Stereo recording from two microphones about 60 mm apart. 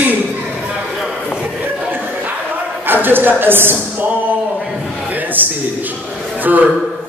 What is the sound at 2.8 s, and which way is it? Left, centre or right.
Speech, right.